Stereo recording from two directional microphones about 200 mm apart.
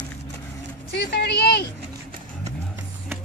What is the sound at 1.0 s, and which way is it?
Speech, 55° left (ahead or behind).